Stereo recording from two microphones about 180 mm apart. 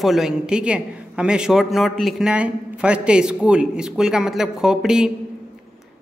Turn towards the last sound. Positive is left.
turn(degrees=-5)  # may be behind; listen again after turning